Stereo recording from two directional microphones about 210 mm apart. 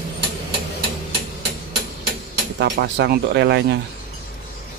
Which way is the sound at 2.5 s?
55° right (ahead or behind).